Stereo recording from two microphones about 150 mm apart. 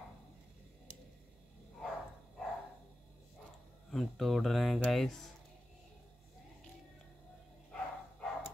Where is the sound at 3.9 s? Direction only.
Centre (ahead or behind).